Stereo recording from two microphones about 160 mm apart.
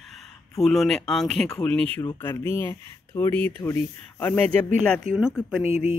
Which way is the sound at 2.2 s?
15° left (ahead or behind).